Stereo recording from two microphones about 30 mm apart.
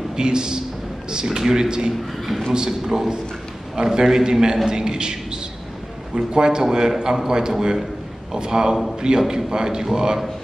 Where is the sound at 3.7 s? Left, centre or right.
Right.